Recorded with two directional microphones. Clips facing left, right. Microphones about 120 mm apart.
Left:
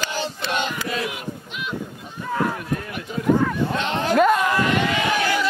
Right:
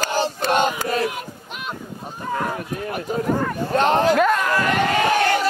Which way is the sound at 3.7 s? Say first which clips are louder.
Right 7 dB; 45° right (ahead or behind).